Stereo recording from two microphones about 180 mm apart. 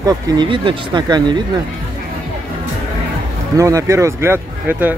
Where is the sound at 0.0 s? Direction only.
25° right (ahead or behind).